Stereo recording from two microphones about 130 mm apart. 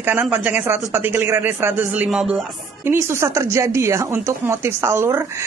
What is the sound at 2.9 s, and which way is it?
Speech, 20° right (ahead or behind).